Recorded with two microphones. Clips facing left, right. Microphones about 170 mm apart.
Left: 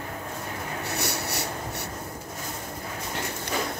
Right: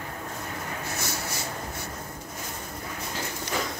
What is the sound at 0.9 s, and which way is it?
Writing, 65° left (ahead or behind).